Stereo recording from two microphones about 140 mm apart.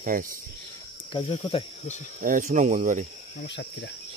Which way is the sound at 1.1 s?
40° left (ahead or behind).